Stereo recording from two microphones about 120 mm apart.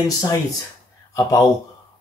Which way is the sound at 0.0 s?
30° left (ahead or behind).